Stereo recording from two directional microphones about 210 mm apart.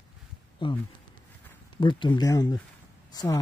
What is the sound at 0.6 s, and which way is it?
Speech, 25° left (ahead or behind).